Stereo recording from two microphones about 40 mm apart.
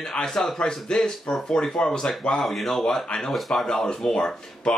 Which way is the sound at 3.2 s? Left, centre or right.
Centre.